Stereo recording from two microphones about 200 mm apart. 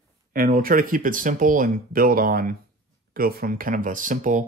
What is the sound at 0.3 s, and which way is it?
Speech, 45° right (ahead or behind).